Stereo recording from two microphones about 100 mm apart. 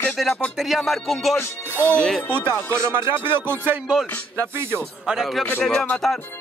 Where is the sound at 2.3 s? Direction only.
25° right (ahead or behind).